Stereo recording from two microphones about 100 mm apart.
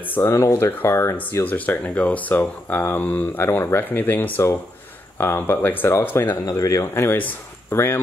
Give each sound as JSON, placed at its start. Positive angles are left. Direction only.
{"t": 0.2, "sound": "speech", "side_deg": 30}
{"t": 6.2, "sound": "speech", "side_deg": 35}